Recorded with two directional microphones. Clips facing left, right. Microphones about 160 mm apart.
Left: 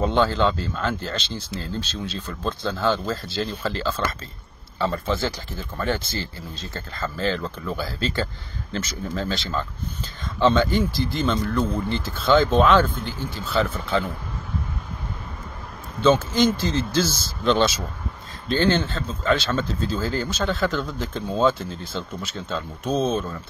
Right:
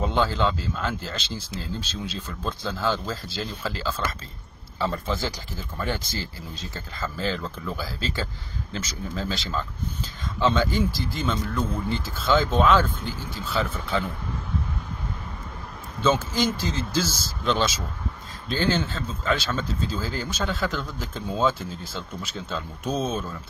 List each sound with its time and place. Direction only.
0.0 s speech: 5° right (ahead or behind)
16.0 s speech: 5° right (ahead or behind)
22.8 s speech: 30° left (ahead or behind)